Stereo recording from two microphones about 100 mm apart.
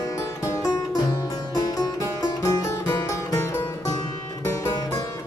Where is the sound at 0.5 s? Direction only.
35° left (ahead or behind).